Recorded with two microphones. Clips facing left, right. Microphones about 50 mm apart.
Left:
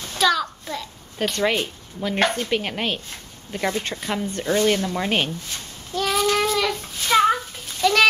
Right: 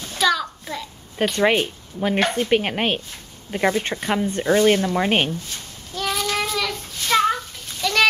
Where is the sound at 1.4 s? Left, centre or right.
Right.